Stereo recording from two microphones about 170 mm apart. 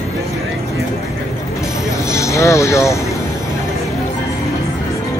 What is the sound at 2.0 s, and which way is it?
Vehicle, 15° left (ahead or behind).